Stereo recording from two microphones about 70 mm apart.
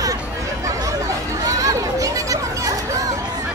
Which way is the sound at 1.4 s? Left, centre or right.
Right.